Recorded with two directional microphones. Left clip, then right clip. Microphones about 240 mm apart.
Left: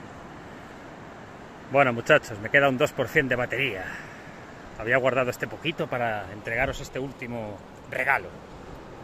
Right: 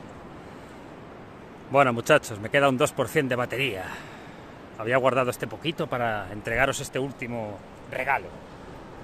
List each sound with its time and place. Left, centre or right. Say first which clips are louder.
1.7 s speech: even; centre
4.8 s speech: even; centre
6.4 s speech: right 4 dB; right
7.9 s a man's voice: left 2 dB; centre